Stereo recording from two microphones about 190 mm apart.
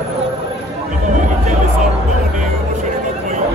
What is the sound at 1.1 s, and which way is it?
Speech, 40° right (ahead or behind).